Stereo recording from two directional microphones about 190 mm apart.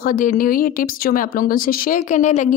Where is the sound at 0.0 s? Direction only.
45° left (ahead or behind).